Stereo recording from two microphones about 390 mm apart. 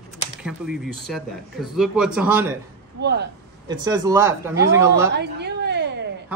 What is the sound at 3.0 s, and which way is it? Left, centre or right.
Speech, right.